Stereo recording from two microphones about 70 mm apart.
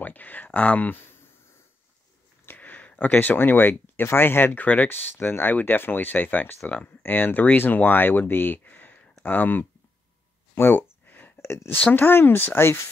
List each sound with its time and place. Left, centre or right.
0.0 s speech: left
2.4 s speech: left
10.5 s a sound: left
11.9 s speech: left